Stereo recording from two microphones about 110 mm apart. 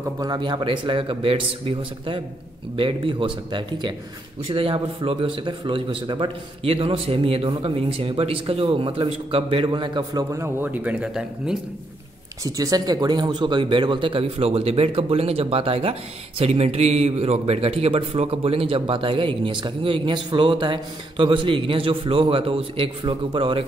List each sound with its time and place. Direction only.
0.2 s a man's voice: 40° right (ahead or behind)
4.6 s speech: 60° right (ahead or behind)
9.7 s a man's voice: 45° right (ahead or behind)
10.3 s speech: 20° right (ahead or behind)
12.4 s speech: 35° right (ahead or behind); by 23.6 s 55° right (ahead or behind)